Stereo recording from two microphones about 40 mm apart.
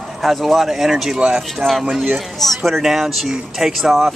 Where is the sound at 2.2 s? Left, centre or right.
Centre.